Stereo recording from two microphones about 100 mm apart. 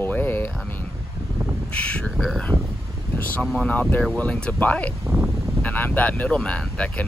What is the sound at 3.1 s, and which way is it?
Speech, 10° left (ahead or behind).